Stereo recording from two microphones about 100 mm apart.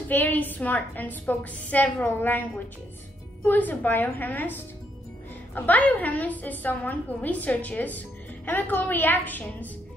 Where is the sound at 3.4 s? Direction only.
20° left (ahead or behind).